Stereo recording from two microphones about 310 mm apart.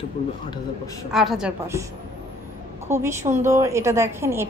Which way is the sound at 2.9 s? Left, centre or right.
Centre.